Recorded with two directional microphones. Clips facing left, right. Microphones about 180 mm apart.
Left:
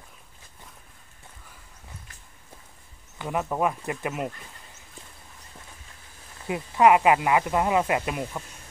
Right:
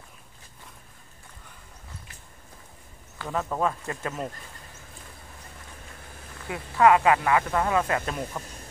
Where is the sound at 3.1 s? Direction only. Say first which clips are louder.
Left 2 dB; 15° left (ahead or behind).